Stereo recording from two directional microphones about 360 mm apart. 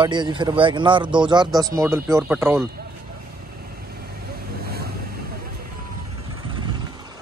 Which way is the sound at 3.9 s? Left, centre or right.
Right.